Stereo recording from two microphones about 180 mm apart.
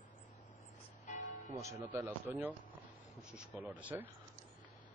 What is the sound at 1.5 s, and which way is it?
Speech, 15° right (ahead or behind).